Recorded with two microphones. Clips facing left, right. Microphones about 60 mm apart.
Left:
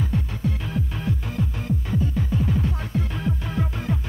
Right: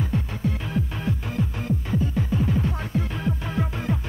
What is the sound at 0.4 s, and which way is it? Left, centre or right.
Music, right.